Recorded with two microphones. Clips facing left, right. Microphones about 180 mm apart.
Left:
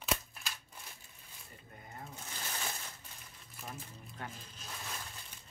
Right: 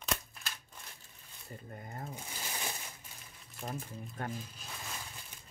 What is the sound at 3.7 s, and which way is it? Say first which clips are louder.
Speech: right 7 dB; 50° right (ahead or behind).